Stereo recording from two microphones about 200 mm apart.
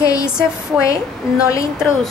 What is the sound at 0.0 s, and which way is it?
Speech, 15° left (ahead or behind).